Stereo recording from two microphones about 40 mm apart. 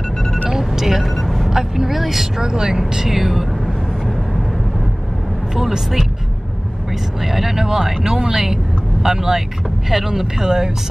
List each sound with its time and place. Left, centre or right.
0.5 s speech: centre
5.6 s speech: centre
7.2 s speech: centre